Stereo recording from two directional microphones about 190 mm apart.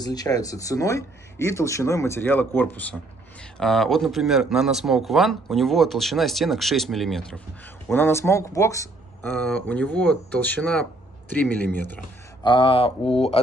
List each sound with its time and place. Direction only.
0.0 s a man's voice: 20° left (ahead or behind); by 7.3 s centre (ahead or behind)
7.9 s speech: 15° left (ahead or behind)
12.4 s speech: 25° left (ahead or behind)